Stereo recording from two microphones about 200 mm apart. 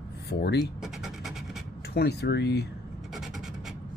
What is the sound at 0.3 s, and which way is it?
Speech, 55° left (ahead or behind).